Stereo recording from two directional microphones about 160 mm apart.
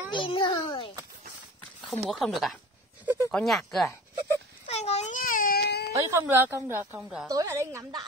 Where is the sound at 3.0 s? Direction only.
15° right (ahead or behind).